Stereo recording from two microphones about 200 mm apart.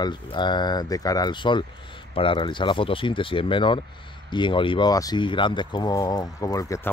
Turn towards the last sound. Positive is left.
turn(degrees=15)  # may be behind; listen again after turning